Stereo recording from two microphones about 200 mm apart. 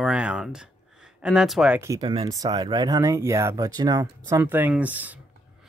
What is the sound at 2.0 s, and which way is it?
Speech, 25° right (ahead or behind).